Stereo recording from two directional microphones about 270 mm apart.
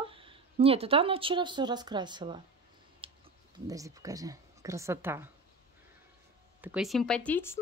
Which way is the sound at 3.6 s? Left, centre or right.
Centre.